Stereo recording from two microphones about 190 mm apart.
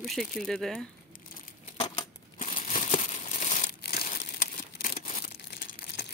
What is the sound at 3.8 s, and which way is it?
Crumpling, 55° left (ahead or behind).